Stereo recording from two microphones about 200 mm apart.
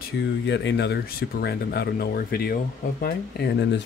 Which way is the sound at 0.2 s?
60° left (ahead or behind).